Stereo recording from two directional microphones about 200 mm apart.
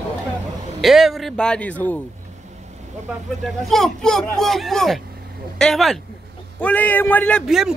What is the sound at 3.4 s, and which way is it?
A man's voice, centre (ahead or behind).